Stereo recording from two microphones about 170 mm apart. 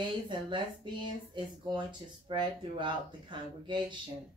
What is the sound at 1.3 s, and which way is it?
Speech, 25° right (ahead or behind).